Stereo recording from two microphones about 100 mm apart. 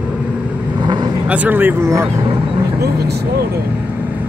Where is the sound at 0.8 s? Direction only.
45° right (ahead or behind).